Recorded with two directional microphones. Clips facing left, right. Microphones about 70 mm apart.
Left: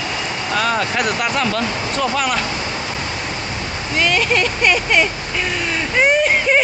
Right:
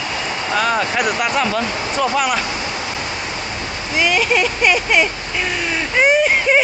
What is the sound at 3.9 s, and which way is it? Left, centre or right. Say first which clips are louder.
Speech: right 1 dB; centre.